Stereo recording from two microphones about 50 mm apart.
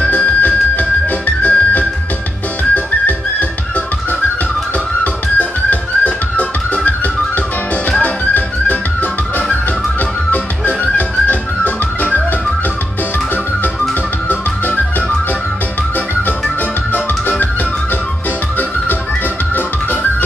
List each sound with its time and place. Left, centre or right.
0.1 s music: left
5.0 s music: left
8.0 s music: left
10.3 s music: left
19.5 s music: left